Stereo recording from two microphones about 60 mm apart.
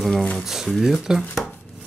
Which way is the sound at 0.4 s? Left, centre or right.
Centre.